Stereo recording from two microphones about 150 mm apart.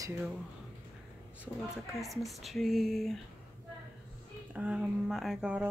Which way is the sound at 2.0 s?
Centre (ahead or behind).